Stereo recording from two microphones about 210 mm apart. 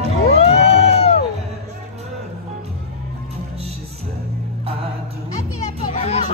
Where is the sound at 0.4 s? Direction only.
30° left (ahead or behind).